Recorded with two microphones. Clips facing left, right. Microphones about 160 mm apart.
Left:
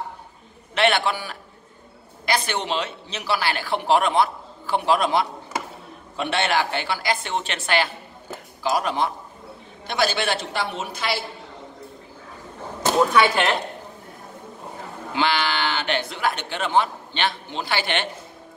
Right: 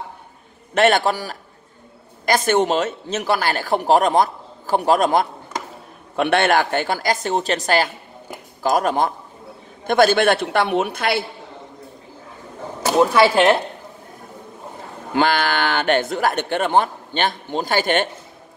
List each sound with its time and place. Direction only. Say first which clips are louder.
0.7 s a man's voice: right 5 dB; 45° right (ahead or behind)
6.1 s a man's voice: right 6 dB; 55° right (ahead or behind)
13.1 s a man's voice: right 5 dB; 40° right (ahead or behind)
15.1 s a man's voice: right 4 dB; 50° right (ahead or behind)